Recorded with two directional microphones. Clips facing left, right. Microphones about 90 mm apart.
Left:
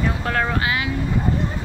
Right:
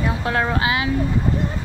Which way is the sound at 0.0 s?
15° right (ahead or behind).